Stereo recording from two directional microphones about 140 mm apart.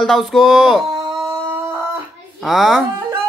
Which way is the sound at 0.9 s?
25° right (ahead or behind).